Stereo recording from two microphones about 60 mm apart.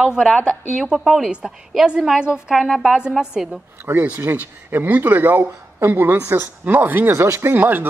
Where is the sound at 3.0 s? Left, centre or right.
Centre.